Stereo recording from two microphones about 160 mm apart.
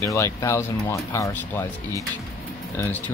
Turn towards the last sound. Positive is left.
turn(degrees=10)  # may be behind; listen again after turning